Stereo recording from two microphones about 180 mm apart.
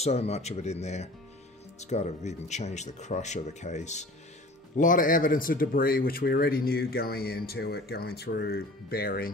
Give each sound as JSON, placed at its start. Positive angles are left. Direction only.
{"t": 0.0, "sound": "speech", "side_deg": 35}